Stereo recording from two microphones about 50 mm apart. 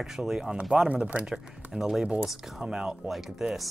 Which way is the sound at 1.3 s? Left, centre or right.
Centre.